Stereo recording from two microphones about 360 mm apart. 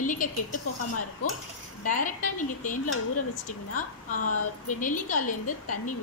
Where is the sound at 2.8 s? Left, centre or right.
Left.